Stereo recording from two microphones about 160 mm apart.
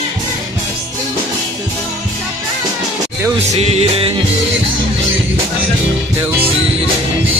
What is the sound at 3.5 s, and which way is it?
Music, 40° right (ahead or behind).